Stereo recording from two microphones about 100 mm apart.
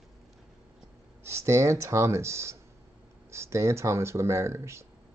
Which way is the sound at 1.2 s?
25° right (ahead or behind).